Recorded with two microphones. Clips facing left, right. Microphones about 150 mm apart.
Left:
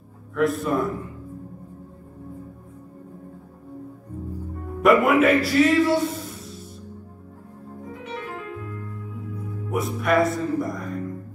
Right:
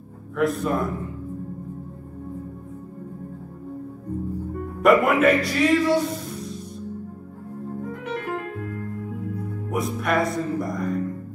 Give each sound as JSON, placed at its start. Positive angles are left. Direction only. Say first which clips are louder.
{"t": 0.4, "sound": "speech", "louder": "left 1 dB", "side_deg": 0}
{"t": 4.8, "sound": "a man's voice", "louder": "even", "side_deg": 0}
{"t": 7.9, "sound": "music", "louder": "right 3 dB", "side_deg": -55}
{"t": 9.7, "sound": "speech", "louder": "left 2 dB", "side_deg": 0}